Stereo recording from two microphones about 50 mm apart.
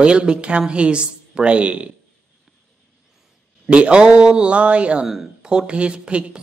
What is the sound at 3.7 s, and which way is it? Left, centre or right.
Speech, right.